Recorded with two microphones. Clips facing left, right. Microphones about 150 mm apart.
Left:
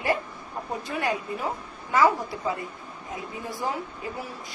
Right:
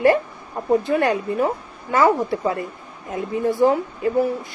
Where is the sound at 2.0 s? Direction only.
65° right (ahead or behind).